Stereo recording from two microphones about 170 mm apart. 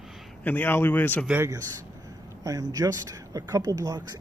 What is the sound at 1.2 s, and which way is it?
Speech, 15° right (ahead or behind).